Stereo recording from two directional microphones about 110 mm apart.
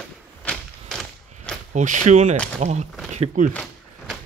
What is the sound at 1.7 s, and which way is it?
Speech, 90° right.